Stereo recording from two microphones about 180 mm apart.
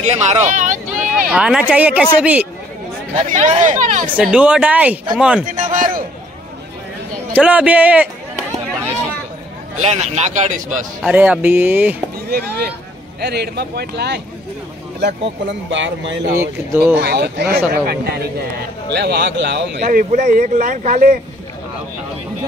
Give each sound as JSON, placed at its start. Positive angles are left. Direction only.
{"t": 0.0, "sound": "speech", "side_deg": -40}
{"t": 1.3, "sound": "speech", "side_deg": -5}
{"t": 3.2, "sound": "speech", "side_deg": -45}
{"t": 4.2, "sound": "a man's voice", "side_deg": -5}
{"t": 5.4, "sound": "speech", "side_deg": -50}
{"t": 7.3, "sound": "speech", "side_deg": -10}
{"t": 9.8, "sound": "a man's voice", "side_deg": -40}
{"t": 11.0, "sound": "speech", "side_deg": -5}
{"t": 13.2, "sound": "a man's voice", "side_deg": -65}
{"t": 16.3, "sound": "speech", "side_deg": -15}
{"t": 16.9, "sound": "speech", "side_deg": -65}
{"t": 18.9, "sound": "a man's voice", "side_deg": -70}
{"t": 19.9, "sound": "speech", "side_deg": -45}